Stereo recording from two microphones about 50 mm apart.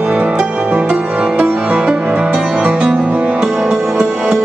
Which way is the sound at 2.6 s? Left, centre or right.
Right.